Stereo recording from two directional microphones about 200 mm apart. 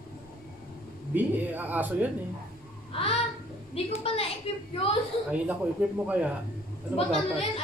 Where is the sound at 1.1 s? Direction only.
10° right (ahead or behind).